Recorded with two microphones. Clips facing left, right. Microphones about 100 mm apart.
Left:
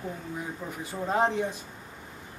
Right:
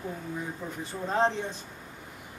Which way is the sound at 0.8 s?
10° left (ahead or behind).